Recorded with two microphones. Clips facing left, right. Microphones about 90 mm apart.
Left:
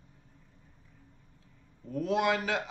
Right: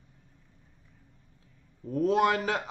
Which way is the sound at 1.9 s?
40° right (ahead or behind).